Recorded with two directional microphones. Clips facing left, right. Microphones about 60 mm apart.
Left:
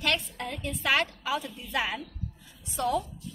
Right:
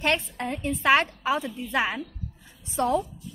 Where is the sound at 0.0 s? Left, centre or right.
Right.